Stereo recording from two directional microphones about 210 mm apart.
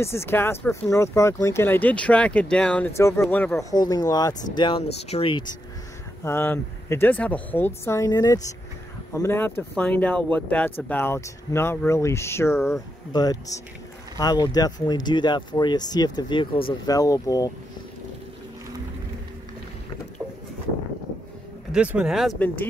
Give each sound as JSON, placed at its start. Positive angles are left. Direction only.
{"t": 0.0, "sound": "speech", "side_deg": 10}
{"t": 6.2, "sound": "speech", "side_deg": 10}
{"t": 21.7, "sound": "speech", "side_deg": -5}
{"t": 22.3, "sound": "speech", "side_deg": 10}